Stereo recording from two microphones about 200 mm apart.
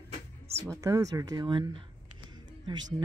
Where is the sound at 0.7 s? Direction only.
15° right (ahead or behind).